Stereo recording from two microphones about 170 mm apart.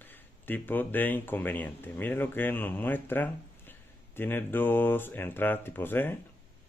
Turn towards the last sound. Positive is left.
turn(degrees=10)  # may be behind; listen again after turning